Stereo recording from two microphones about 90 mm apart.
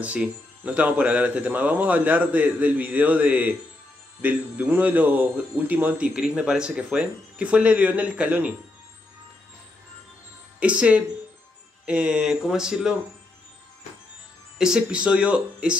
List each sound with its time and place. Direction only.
0.0 s speech: 15° right (ahead or behind)
10.6 s speech: 15° right (ahead or behind)
14.6 s speech: 10° right (ahead or behind)